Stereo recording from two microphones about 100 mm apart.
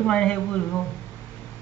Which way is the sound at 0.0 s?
5° left (ahead or behind).